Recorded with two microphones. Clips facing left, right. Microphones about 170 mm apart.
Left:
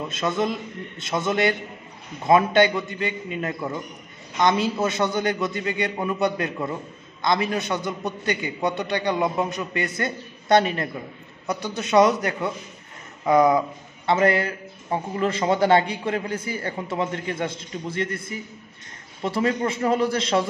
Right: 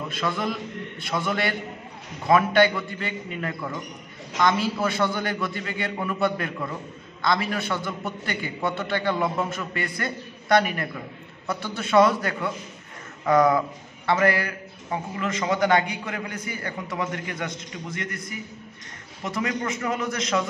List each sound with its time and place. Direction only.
0.1 s a man's voice: 20° left (ahead or behind)